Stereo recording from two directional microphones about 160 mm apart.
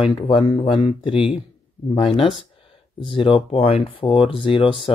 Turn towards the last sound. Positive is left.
turn(degrees=35)  # may be behind; listen again after turning